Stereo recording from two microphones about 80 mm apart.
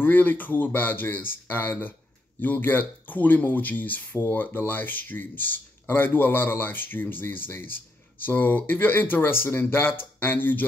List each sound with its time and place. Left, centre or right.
0.0 s speech: left